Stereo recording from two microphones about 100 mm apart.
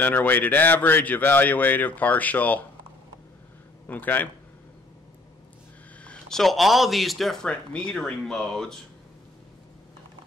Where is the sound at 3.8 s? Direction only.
15° left (ahead or behind).